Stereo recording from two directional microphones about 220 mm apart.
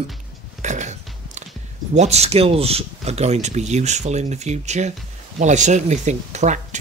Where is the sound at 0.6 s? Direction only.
35° right (ahead or behind).